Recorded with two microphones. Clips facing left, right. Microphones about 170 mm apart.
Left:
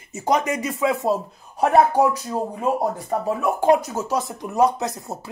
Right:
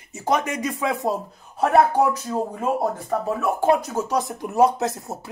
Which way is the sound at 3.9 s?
5° left (ahead or behind).